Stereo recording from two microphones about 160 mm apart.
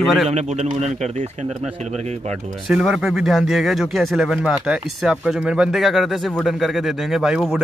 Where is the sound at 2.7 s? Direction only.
5° right (ahead or behind).